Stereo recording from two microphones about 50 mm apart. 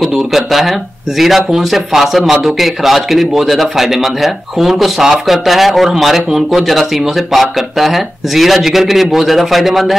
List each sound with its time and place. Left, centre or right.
0.0 s a man's voice: centre